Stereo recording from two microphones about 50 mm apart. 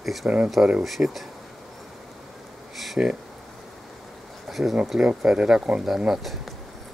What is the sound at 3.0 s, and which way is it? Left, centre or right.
Speech, right.